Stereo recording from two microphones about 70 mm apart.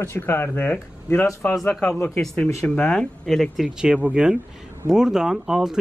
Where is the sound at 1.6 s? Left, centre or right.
Centre.